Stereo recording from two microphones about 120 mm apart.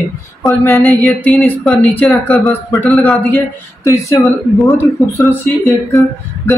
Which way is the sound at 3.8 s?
25° left (ahead or behind).